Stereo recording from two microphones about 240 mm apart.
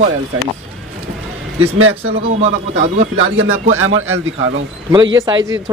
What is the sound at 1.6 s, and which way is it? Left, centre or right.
Speech, right.